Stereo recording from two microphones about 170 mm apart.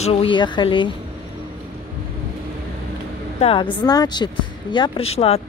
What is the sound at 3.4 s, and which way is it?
Speech, 30° left (ahead or behind).